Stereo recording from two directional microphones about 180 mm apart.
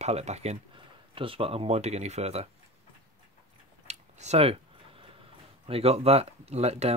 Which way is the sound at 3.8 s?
40° right (ahead or behind).